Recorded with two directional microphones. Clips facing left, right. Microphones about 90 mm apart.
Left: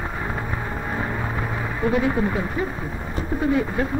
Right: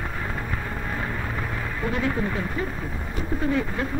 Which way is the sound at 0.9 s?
20° left (ahead or behind).